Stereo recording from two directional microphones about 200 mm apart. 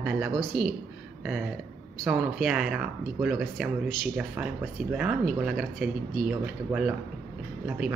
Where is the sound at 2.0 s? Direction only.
Centre (ahead or behind).